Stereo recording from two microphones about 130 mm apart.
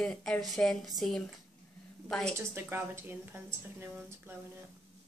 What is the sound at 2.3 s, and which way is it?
Speech, 20° right (ahead or behind).